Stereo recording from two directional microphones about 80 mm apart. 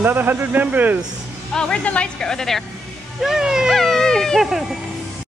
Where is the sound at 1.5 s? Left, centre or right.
Centre.